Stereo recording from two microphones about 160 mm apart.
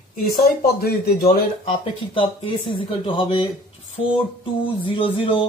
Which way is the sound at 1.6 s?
35° left (ahead or behind).